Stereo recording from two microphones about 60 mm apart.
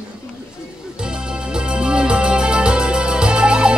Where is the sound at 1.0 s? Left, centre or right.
Centre.